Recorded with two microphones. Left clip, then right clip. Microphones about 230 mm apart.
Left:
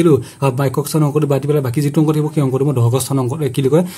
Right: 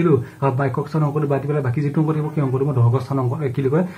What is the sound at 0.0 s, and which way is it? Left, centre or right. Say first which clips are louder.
A man's voice: left 5 dB; left.